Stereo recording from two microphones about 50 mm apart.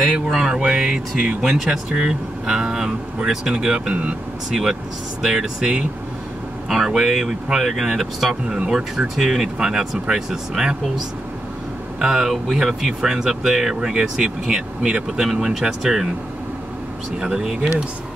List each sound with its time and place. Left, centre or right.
0.0 s speech: centre
8.5 s speech: right
8.7 s speech: centre
12.0 s speech: centre
17.2 s speech: centre